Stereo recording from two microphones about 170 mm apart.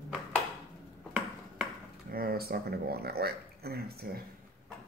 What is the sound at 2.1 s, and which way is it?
Speech, 60° right (ahead or behind).